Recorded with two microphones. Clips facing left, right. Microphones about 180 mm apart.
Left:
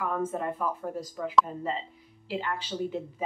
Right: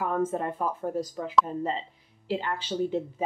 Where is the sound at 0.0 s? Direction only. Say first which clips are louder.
Right 3 dB; 30° right (ahead or behind).